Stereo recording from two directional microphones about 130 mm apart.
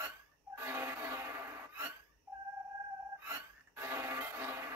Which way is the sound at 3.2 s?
20° right (ahead or behind).